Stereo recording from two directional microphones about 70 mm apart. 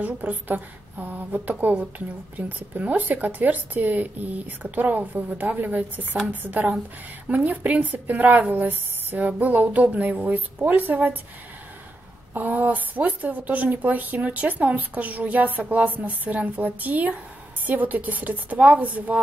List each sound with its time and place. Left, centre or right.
0.0 s a woman's voice: right
12.4 s a woman's voice: right